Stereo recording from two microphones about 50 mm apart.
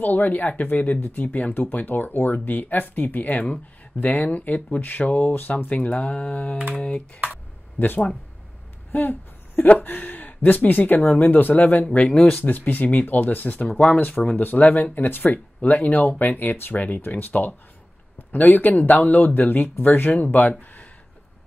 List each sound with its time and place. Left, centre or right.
0.0 s speech: left
7.8 s speech: left
12.0 s speech: centre
12.4 s speech: left